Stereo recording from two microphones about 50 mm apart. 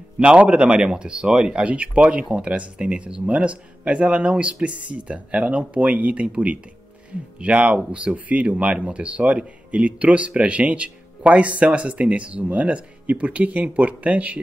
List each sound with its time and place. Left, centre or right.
0.2 s speech: right